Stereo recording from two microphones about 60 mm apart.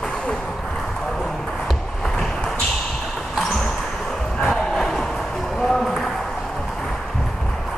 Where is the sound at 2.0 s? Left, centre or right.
Centre.